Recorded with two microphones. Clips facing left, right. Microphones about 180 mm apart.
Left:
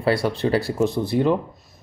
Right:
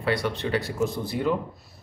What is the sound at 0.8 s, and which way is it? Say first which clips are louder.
Speech: left 6 dB; 25° left (ahead or behind).